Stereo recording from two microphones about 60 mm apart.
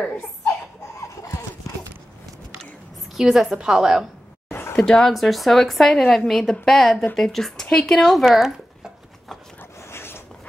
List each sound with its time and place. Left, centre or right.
0.5 s a sound: left
3.2 s a woman's voice: centre
4.5 s a sound: left
4.7 s a woman's voice: centre
8.3 s a woman's voice: centre
9.8 s zipper: left